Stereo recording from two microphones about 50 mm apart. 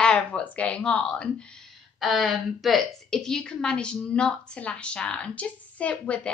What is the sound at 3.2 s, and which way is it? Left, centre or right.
A woman's voice, centre.